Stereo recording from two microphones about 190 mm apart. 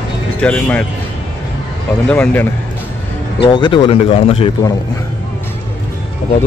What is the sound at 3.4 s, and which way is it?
A man's voice, 25° left (ahead or behind).